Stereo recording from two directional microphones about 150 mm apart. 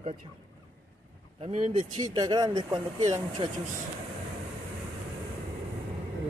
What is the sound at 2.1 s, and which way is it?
Speech, 30° right (ahead or behind).